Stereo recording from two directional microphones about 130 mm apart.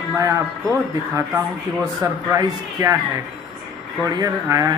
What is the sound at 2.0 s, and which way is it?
Speech, 25° right (ahead or behind).